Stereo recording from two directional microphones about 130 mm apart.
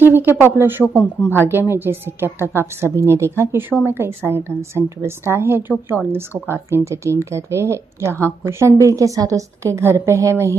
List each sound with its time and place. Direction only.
0.0 s a woman's voice: 15° right (ahead or behind)